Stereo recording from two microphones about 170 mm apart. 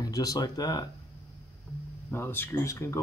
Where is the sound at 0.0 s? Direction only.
20° left (ahead or behind).